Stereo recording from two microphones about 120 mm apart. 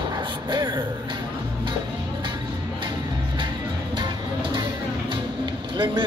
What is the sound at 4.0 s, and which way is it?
Music, 40° right (ahead or behind).